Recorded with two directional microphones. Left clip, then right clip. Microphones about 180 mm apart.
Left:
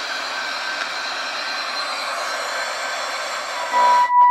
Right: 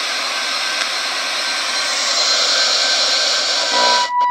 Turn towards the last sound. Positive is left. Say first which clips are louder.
# left 1 dB
turn(degrees=-45)  # may be behind; listen again after turning